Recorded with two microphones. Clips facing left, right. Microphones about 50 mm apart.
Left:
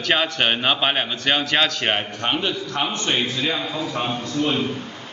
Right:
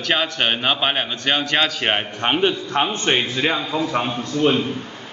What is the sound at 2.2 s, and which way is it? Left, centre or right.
A man's voice, right.